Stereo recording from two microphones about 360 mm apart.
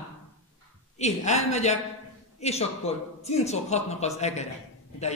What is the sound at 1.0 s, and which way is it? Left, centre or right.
A man's voice, centre.